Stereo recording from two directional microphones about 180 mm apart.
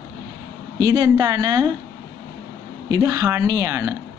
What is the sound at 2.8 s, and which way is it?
A woman's voice, 20° right (ahead or behind).